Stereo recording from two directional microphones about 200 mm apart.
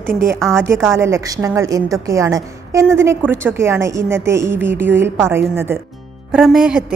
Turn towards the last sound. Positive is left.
turn(degrees=-5)  # may be behind; listen again after turning